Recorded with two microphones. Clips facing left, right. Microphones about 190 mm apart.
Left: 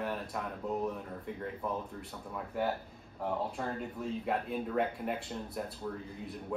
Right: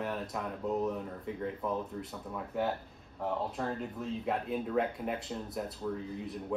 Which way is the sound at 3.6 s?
Centre (ahead or behind).